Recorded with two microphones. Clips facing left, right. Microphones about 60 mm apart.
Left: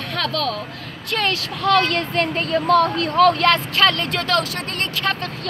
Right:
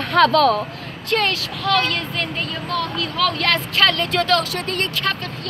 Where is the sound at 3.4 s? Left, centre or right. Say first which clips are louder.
Left 2 dB; centre.